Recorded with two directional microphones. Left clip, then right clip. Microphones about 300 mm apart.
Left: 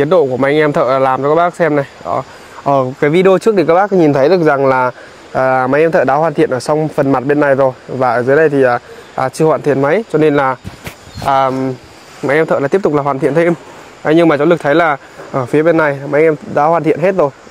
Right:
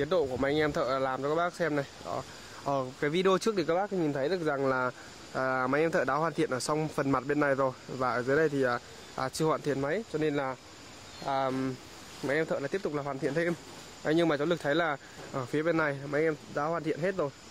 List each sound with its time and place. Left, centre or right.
0.0 s speech: centre